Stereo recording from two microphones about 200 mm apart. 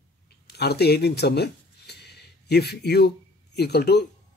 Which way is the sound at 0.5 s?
55° left (ahead or behind).